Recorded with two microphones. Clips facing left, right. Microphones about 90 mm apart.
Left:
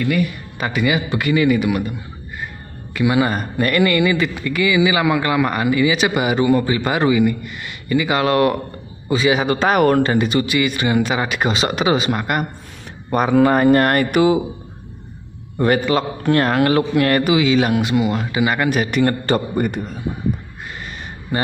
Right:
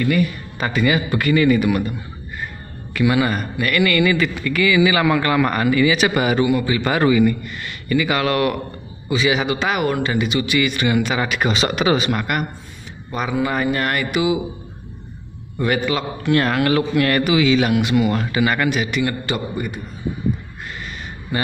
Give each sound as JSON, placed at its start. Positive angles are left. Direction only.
{"t": 0.0, "sound": "a man's voice", "side_deg": 5}
{"t": 2.9, "sound": "a man's voice", "side_deg": 25}
{"t": 6.4, "sound": "speech", "side_deg": 35}
{"t": 6.8, "sound": "a man's voice", "side_deg": 20}
{"t": 9.6, "sound": "speech", "side_deg": 45}
{"t": 13.1, "sound": "speech", "side_deg": 50}
{"t": 15.5, "sound": "speech", "side_deg": 35}
{"t": 18.0, "sound": "a man's voice", "side_deg": 15}
{"t": 18.7, "sound": "speech", "side_deg": 45}
{"t": 21.3, "sound": "speech", "side_deg": 35}